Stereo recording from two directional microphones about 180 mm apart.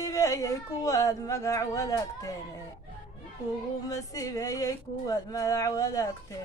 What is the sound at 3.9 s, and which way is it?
Speech, 20° left (ahead or behind).